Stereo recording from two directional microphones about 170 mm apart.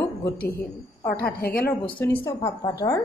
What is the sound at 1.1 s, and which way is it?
Speech, 60° left (ahead or behind).